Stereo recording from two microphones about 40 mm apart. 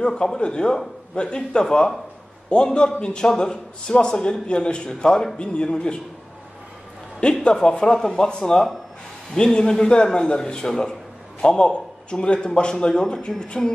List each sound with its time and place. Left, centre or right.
0.1 s a man's voice: centre
7.2 s a man's voice: left